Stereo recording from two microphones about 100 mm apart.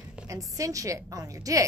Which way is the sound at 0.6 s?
35° right (ahead or behind).